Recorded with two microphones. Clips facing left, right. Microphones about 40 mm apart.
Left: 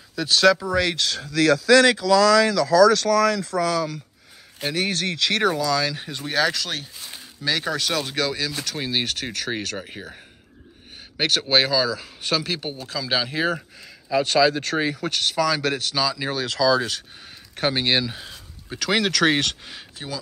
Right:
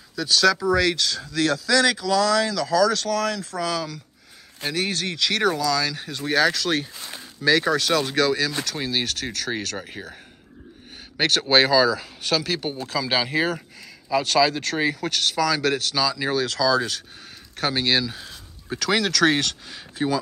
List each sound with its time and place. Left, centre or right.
0.1 s speech: left
0.6 s speech: centre
0.9 s speech: left
1.3 s speech: left
4.9 s speech: left
5.6 s speech: centre
6.2 s speech: centre
12.2 s speech: centre
12.6 s speech: centre
16.4 s speech: centre
20.0 s speech: centre